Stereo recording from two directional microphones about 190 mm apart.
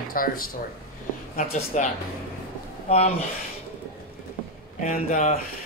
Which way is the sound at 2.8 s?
35° left (ahead or behind).